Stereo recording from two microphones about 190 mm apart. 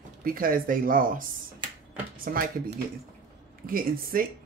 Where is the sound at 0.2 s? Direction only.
50° right (ahead or behind).